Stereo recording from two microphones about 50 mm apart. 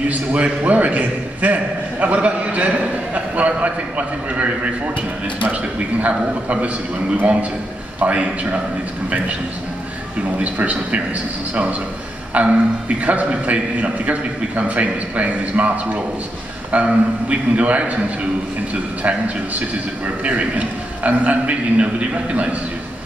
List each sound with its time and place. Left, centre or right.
0.1 s a man's voice: right
10.4 s a man's voice: right
12.4 s a man's voice: right